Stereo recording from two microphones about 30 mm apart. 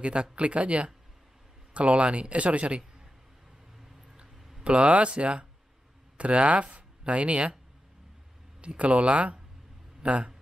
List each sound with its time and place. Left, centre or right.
0.0 s speech: right
4.6 s speech: right
8.5 s speech: right